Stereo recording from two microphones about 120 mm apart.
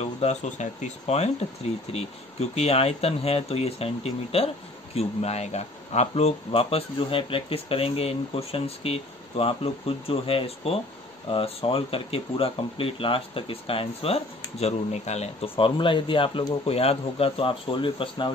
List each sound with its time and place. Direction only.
0.0 s speech: 65° left (ahead or behind); by 18.3 s 45° left (ahead or behind)